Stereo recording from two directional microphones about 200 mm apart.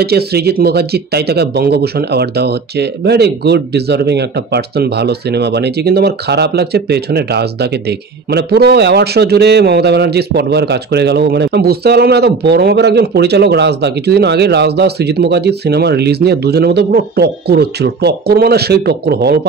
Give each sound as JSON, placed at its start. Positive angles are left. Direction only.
{"t": 0.0, "sound": "a man's voice", "side_deg": -55}